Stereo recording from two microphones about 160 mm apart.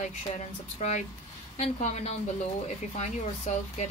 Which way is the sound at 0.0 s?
45° left (ahead or behind).